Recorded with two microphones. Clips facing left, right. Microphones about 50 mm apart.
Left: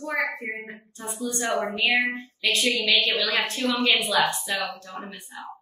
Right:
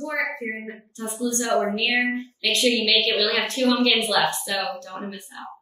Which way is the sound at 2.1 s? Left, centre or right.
Centre.